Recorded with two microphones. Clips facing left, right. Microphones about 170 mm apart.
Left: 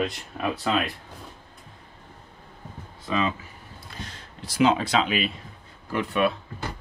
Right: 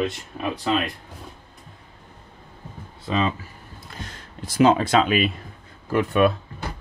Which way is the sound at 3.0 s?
30° right (ahead or behind).